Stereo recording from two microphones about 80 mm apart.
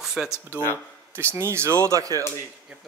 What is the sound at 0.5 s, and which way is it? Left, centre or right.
Speech, left.